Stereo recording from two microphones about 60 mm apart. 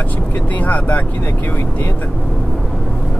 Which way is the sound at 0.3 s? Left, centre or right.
Left.